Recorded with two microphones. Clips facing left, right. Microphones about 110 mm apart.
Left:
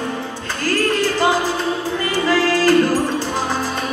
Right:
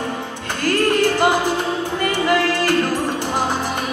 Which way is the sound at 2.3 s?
20° right (ahead or behind).